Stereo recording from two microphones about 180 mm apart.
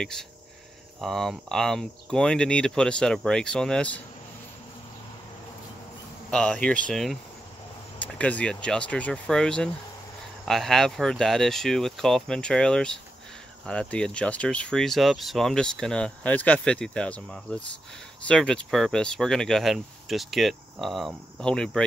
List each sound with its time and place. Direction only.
0.0 s speech: 5° left (ahead or behind)
6.3 s speech: 5° left (ahead or behind)